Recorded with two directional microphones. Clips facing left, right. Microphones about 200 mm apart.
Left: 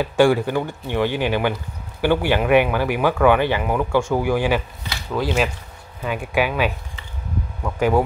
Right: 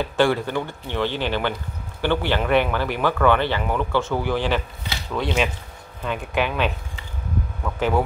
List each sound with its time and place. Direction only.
0.0 s speech: 10° left (ahead or behind)